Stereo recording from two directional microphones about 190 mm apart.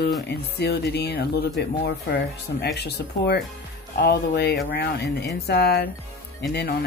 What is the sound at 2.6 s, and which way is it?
Speech, 60° left (ahead or behind).